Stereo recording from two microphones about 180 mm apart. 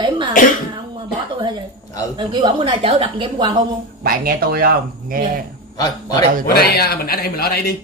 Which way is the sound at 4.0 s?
55° right (ahead or behind).